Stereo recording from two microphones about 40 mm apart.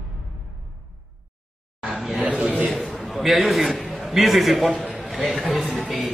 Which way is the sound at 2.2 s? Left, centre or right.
Right.